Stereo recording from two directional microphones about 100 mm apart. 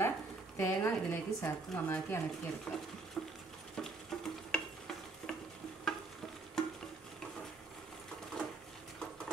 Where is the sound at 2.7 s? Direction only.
15° left (ahead or behind).